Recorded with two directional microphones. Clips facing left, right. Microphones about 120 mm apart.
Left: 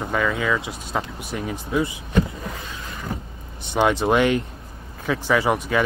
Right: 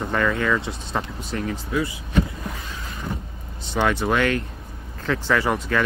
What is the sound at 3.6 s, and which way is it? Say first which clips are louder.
Speech: left 2 dB; 20° left (ahead or behind).